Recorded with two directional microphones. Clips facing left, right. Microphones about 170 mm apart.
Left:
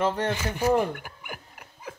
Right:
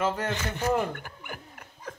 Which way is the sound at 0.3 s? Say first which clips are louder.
Left 3 dB; 10° left (ahead or behind).